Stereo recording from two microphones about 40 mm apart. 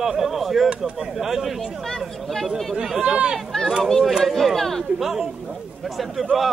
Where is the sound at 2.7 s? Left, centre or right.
Centre.